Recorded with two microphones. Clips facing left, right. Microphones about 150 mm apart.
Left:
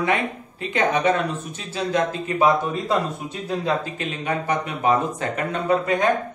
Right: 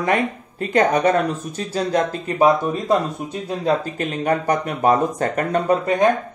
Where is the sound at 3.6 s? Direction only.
45° right (ahead or behind).